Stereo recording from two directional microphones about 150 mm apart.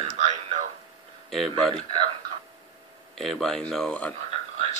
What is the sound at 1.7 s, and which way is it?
Speech, 35° right (ahead or behind).